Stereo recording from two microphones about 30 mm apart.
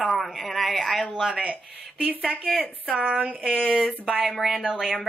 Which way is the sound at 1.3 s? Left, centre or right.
Right.